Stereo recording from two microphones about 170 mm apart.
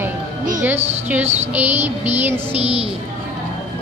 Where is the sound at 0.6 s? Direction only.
10° right (ahead or behind).